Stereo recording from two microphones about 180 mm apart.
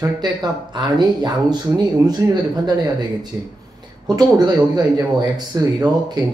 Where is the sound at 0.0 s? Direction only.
20° right (ahead or behind).